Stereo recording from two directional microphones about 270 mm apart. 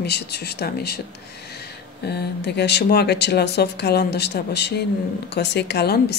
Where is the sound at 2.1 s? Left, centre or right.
Left.